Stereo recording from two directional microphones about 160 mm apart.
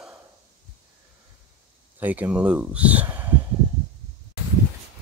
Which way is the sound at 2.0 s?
10° right (ahead or behind).